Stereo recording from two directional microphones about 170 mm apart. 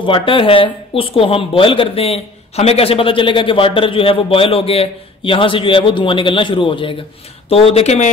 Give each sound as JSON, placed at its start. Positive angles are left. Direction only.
{"t": 0.0, "sound": "speech", "side_deg": 30}